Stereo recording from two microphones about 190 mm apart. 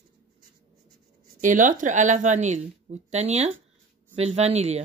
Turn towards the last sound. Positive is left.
turn(degrees=-35)  # may be behind; listen again after turning